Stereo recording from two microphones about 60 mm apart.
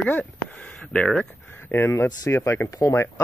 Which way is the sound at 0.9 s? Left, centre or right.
Centre.